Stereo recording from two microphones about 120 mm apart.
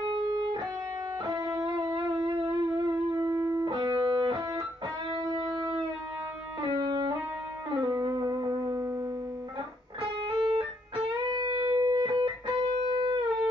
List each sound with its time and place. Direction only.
0.0 s music: 40° right (ahead or behind)
3.6 s music: 35° right (ahead or behind)
10.2 s music: 40° right (ahead or behind)